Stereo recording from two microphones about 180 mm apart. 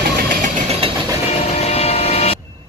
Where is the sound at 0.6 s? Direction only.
35° right (ahead or behind).